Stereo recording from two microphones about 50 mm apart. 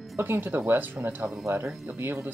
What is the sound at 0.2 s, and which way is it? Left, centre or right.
Speech, right.